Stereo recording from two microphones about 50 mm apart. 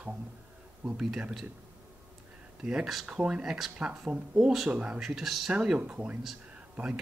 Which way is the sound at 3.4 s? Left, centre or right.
Centre.